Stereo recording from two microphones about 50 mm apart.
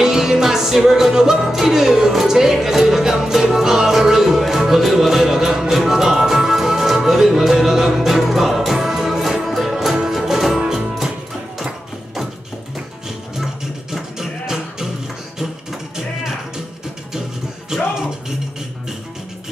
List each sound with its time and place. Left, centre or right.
0.0 s music: centre
13.9 s music: centre
17.7 s music: centre